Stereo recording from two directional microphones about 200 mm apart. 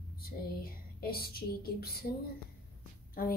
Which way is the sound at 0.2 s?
50° left (ahead or behind).